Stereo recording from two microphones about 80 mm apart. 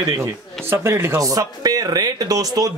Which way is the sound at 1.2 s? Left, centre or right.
Right.